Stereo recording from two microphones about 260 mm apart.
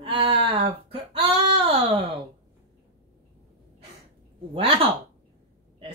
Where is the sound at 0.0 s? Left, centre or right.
Centre.